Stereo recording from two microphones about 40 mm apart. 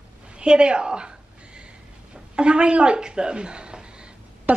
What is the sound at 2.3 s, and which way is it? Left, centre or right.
A woman's voice, right.